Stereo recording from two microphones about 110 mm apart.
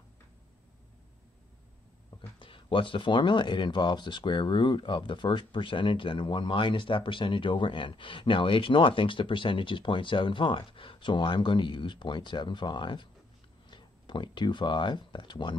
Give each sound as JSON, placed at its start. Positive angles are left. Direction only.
{"t": 2.3, "sound": "speech", "side_deg": 50}